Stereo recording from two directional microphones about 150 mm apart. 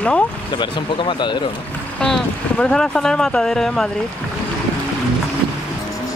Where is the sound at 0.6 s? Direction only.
30° left (ahead or behind).